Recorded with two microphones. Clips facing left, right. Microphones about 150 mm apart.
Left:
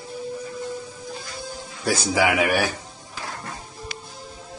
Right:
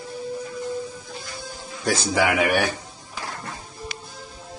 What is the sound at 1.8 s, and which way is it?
Speech, 5° left (ahead or behind).